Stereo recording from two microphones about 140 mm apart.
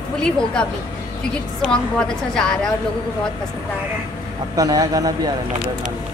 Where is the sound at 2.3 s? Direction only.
5° left (ahead or behind).